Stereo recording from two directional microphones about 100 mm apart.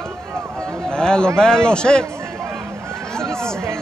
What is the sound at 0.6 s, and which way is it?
Speech, 30° right (ahead or behind).